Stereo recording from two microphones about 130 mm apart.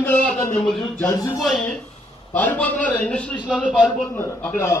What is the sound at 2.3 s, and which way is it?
A man's voice, 10° left (ahead or behind).